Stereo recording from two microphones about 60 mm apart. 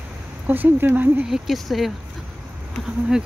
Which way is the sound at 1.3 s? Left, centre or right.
Centre.